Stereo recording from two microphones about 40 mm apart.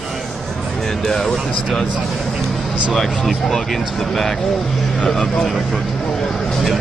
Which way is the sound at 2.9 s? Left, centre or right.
Centre.